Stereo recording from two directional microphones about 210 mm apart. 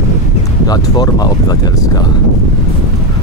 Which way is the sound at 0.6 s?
20° left (ahead or behind).